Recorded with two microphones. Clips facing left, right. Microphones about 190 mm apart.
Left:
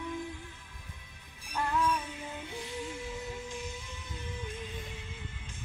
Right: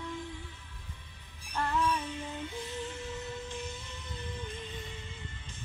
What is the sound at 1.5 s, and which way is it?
Music, 10° left (ahead or behind).